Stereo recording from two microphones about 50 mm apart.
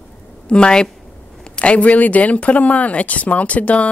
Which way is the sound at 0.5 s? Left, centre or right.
Centre.